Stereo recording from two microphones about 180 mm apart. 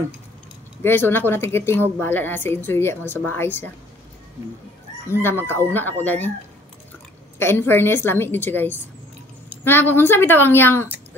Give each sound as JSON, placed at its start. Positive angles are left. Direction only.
{"t": 0.8, "sound": "a woman's voice", "side_deg": 10}
{"t": 5.0, "sound": "a woman's voice", "side_deg": 15}
{"t": 7.3, "sound": "a woman's voice", "side_deg": 15}